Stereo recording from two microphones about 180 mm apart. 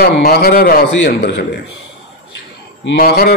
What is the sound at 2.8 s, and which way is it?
Speech, 70° left (ahead or behind).